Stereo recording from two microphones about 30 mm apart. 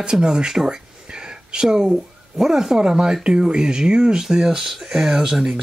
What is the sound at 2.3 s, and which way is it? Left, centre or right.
Speech, centre.